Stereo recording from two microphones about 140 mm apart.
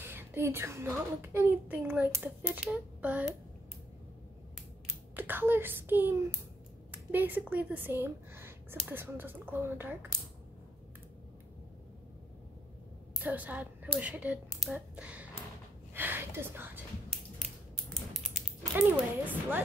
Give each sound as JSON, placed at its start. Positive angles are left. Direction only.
{"t": 0.0, "sound": "speech", "side_deg": -15}
{"t": 5.1, "sound": "a woman's voice", "side_deg": -15}
{"t": 13.2, "sound": "speech", "side_deg": -10}
{"t": 15.9, "sound": "a sound", "side_deg": -15}
{"t": 18.1, "sound": "a sound", "side_deg": 0}
{"t": 18.8, "sound": "speech", "side_deg": -15}